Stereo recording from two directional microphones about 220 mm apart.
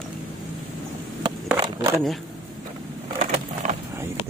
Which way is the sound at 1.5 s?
20° right (ahead or behind).